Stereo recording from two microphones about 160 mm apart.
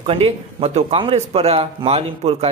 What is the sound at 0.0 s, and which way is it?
A man's voice, 35° right (ahead or behind).